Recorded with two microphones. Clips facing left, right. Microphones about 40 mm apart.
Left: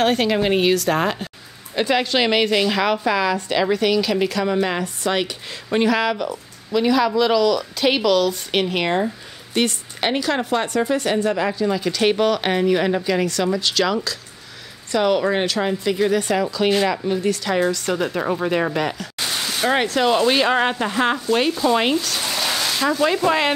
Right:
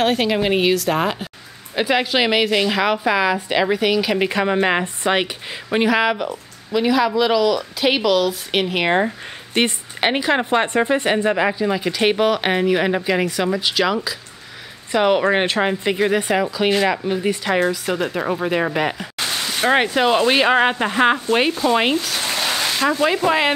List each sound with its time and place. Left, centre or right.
0.0 s a woman's voice: centre
8.8 s a woman's voice: right; by 23.5 s centre